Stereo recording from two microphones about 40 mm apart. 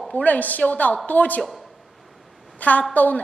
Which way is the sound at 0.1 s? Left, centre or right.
Left.